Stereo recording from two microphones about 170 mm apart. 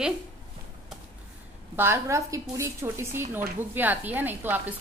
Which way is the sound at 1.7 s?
15° right (ahead or behind).